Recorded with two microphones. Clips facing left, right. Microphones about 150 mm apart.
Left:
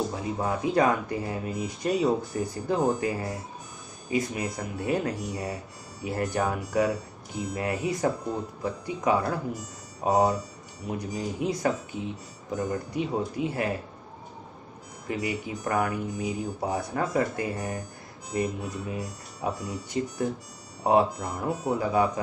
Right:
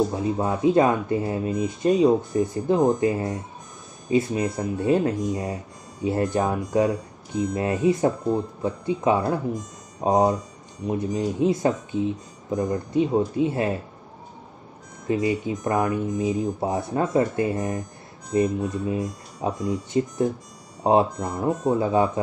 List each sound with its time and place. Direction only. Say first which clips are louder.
0.1 s speech: right 5 dB; 25° right (ahead or behind)
15.0 s speech: right 7 dB; 25° right (ahead or behind)
21.2 s speech: right 5 dB; 40° right (ahead or behind)
21.5 s speech: right 5 dB; 25° right (ahead or behind)